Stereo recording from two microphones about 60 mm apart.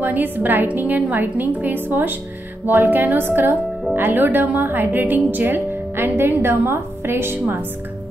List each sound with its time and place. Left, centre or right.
0.0 s speech: right